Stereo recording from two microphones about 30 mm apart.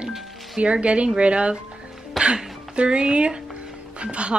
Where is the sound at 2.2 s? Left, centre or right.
Centre.